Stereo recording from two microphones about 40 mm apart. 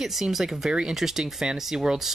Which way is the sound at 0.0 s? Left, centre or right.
Centre.